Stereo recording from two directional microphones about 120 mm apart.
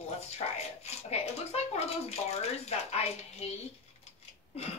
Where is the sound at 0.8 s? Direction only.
60° left (ahead or behind).